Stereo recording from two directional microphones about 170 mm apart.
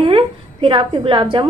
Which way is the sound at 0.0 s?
30° right (ahead or behind).